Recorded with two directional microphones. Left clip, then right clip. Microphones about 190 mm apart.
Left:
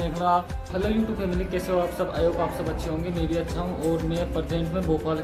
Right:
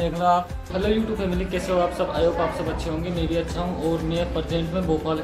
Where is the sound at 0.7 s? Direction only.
Centre (ahead or behind).